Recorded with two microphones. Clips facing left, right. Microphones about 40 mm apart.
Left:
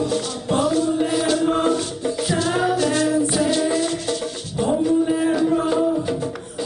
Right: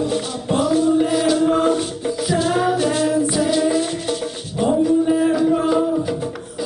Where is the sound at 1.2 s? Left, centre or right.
Centre.